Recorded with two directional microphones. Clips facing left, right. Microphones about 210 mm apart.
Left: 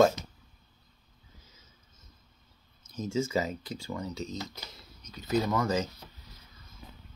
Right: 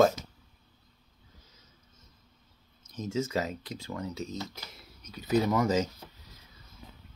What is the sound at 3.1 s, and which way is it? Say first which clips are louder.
Speech: left 1 dB; centre (ahead or behind).